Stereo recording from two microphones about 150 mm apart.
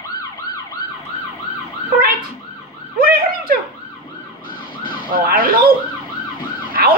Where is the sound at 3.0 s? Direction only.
75° right (ahead or behind).